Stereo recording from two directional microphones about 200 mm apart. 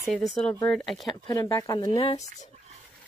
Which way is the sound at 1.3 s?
15° left (ahead or behind).